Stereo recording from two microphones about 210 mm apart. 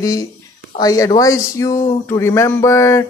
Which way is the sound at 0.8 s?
15° left (ahead or behind).